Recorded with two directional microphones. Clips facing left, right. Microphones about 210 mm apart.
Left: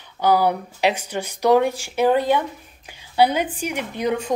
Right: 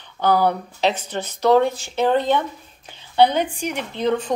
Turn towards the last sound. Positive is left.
turn(degrees=10)  # may be behind; listen again after turning